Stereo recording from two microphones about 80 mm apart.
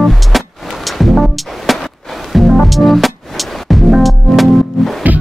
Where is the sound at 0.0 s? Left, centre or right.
Centre.